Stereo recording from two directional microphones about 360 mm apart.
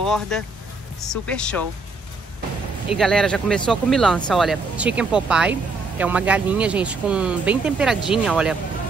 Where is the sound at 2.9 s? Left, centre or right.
Centre.